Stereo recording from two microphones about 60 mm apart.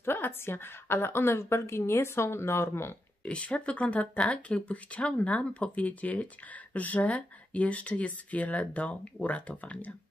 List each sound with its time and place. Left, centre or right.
0.0 s a woman's voice: left
3.3 s speech: centre